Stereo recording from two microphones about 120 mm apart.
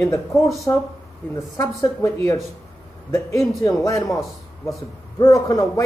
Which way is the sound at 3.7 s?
25° left (ahead or behind).